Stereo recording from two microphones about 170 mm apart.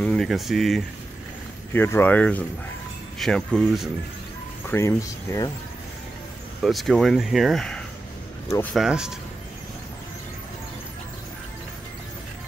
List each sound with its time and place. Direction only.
0.0 s speech: 5° left (ahead or behind)
1.7 s speech: 15° left (ahead or behind)
4.6 s speech: 15° left (ahead or behind)
6.6 s speech: centre (ahead or behind)